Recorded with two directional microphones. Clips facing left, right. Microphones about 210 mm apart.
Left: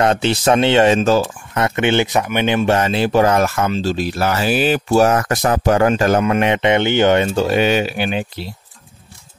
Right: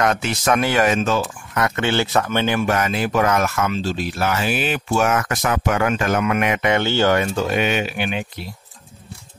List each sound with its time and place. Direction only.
0.0 s speech: 30° left (ahead or behind)